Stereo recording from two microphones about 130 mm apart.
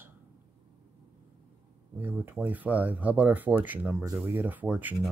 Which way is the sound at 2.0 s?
15° right (ahead or behind).